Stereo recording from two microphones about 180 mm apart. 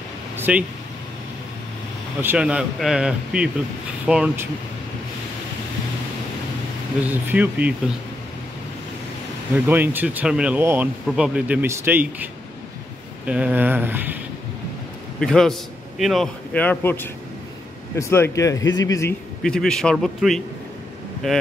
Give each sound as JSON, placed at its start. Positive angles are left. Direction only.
{"t": 0.4, "sound": "vehicle", "side_deg": -5}
{"t": 2.2, "sound": "speech", "side_deg": -5}
{"t": 7.1, "sound": "speech", "side_deg": -10}
{"t": 9.7, "sound": "speech", "side_deg": -10}
{"t": 15.1, "sound": "a man's voice", "side_deg": 5}
{"t": 19.4, "sound": "speech", "side_deg": 5}